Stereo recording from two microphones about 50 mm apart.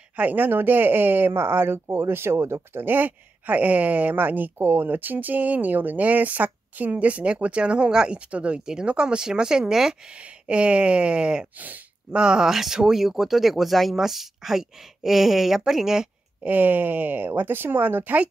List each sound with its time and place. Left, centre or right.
0.1 s speech: right
2.8 s speech: right; by 8.2 s centre
8.3 s a sound: right
8.6 s speech: centre
10.1 s a sound: right
11.5 s speech: right
12.2 s speech: centre
12.4 s speech: centre
16.4 s speech: right